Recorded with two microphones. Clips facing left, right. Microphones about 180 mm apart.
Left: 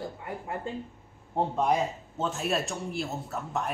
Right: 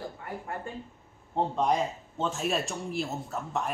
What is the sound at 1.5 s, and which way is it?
Speech, 5° left (ahead or behind).